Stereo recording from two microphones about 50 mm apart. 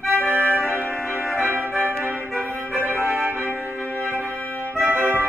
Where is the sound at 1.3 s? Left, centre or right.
Right.